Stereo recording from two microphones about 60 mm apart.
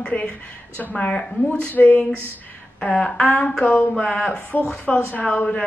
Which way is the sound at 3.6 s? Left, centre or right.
Left.